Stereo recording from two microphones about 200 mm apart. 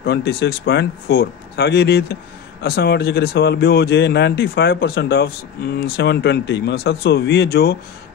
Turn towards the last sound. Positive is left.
turn(degrees=50)  # may be behind; listen again after turning